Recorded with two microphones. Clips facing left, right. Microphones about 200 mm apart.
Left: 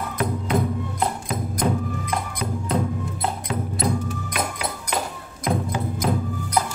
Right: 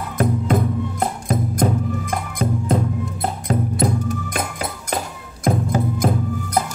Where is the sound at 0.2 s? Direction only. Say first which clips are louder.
Right 4 dB; 45° right (ahead or behind).